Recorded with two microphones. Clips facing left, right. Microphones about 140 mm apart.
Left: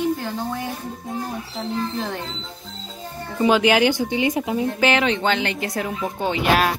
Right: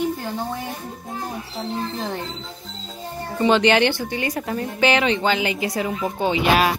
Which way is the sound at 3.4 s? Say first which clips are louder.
Even; 5° left (ahead or behind).